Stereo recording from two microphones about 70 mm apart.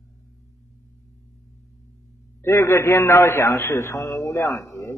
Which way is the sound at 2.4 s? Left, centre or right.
Left.